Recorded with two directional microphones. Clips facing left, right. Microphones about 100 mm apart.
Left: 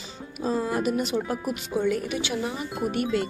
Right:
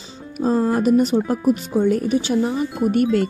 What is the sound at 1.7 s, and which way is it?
Speech, 40° right (ahead or behind).